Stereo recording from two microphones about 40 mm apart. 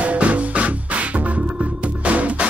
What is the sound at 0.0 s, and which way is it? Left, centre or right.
Music, right.